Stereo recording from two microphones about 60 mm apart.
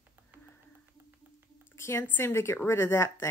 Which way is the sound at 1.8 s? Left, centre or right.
Left.